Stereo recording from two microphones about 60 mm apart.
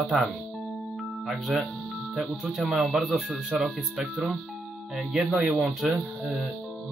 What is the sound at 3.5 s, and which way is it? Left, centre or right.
Speech, centre.